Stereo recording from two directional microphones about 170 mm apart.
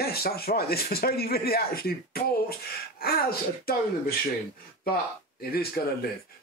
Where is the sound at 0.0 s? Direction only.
65° left (ahead or behind).